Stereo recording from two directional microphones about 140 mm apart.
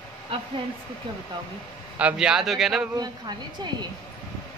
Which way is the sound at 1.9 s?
10° right (ahead or behind).